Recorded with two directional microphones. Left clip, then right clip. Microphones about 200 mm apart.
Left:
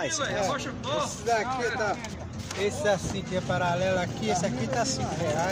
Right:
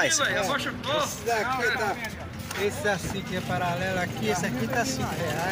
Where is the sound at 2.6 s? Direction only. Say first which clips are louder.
Left 1 dB; 30° left (ahead or behind).